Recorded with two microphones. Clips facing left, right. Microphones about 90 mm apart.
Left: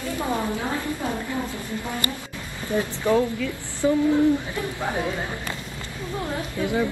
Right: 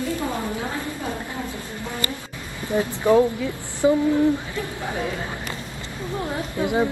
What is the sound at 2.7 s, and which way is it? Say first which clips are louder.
Speech: right 3 dB; 20° right (ahead or behind).